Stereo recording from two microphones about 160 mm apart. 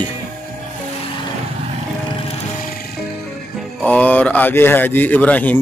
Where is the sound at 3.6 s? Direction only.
5° left (ahead or behind).